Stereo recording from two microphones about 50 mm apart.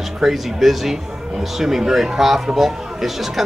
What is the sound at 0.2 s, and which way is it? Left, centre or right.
Speech, centre.